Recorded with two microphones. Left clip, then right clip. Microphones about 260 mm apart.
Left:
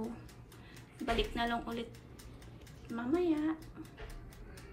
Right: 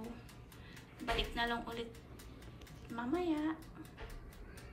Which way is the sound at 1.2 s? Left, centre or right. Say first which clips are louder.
Left 2 dB; centre.